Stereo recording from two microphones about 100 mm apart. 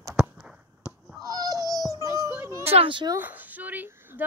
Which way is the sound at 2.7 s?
75° right (ahead or behind).